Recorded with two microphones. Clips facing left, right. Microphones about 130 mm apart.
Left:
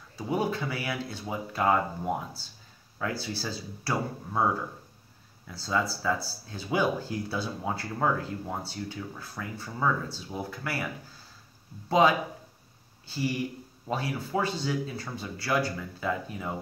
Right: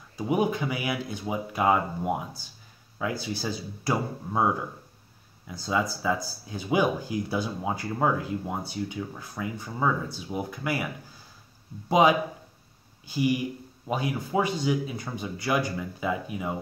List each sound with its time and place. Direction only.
0.2 s speech: 15° right (ahead or behind)
5.5 s speech: 15° right (ahead or behind)
11.9 s speech: 15° right (ahead or behind)